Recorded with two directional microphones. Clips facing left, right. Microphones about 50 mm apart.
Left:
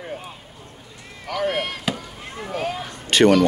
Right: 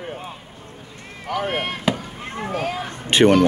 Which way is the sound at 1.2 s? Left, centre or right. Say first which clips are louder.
Even; right.